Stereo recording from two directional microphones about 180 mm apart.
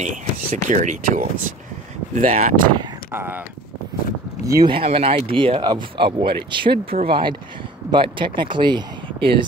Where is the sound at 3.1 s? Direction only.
10° right (ahead or behind).